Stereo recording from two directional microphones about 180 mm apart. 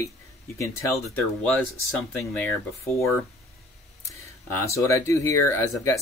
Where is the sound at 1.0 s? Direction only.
5° left (ahead or behind).